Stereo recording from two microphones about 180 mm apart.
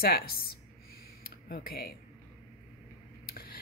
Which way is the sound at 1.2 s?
55° left (ahead or behind).